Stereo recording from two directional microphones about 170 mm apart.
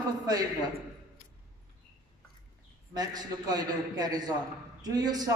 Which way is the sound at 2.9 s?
25° right (ahead or behind).